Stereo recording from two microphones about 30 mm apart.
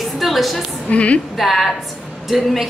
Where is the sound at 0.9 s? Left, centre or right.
Left.